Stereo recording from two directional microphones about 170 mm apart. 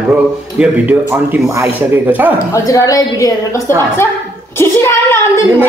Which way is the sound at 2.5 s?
20° left (ahead or behind).